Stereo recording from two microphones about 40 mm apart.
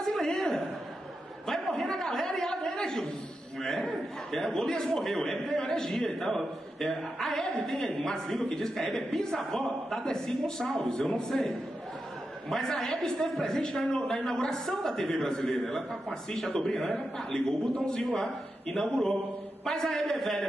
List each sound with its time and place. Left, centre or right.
0.0 s a sound: centre
5.0 s a man's voice: centre
17.5 s a man's voice: centre